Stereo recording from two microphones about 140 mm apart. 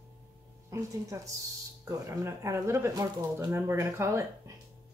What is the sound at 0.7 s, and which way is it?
Speech, 25° right (ahead or behind).